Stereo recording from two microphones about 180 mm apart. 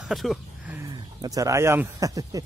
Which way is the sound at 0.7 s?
20° right (ahead or behind).